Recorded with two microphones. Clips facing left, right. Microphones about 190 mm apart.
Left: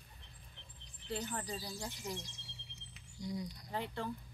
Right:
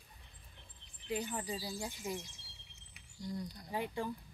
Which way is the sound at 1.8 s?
10° right (ahead or behind).